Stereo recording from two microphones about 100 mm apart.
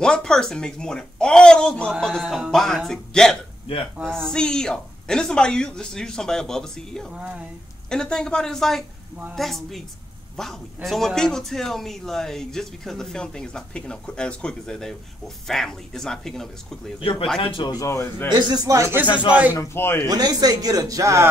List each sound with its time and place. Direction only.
0.0 s a man's voice: 5° left (ahead or behind)
7.2 s speech: 10° right (ahead or behind)
7.9 s a man's voice: 5° left (ahead or behind)
17.0 s speech: 65° left (ahead or behind)
17.8 s speech: 25° left (ahead or behind)
18.3 s a man's voice: 40° right (ahead or behind)
18.9 s speech: 15° right (ahead or behind)
19.5 s speech: 25° left (ahead or behind)
20.1 s a man's voice: 40° right (ahead or behind)